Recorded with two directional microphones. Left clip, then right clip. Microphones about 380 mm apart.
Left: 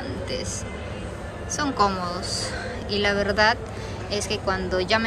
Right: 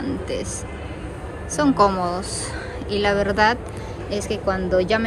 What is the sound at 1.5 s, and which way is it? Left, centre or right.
Speech, centre.